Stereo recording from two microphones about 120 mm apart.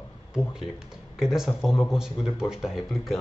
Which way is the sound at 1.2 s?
5° right (ahead or behind).